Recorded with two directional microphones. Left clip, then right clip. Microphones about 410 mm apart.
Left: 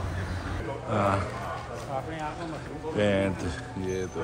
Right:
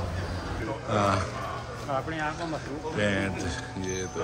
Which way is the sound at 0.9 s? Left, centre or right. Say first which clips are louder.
Right 1 dB; centre.